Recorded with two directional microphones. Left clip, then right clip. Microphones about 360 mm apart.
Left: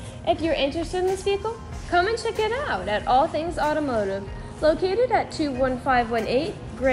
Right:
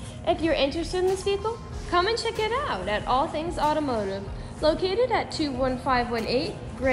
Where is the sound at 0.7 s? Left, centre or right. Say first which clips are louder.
Left 1 dB; centre.